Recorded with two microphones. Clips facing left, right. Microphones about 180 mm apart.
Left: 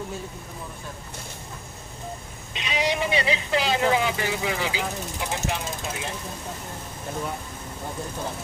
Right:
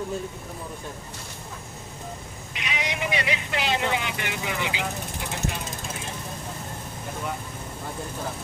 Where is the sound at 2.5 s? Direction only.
30° left (ahead or behind).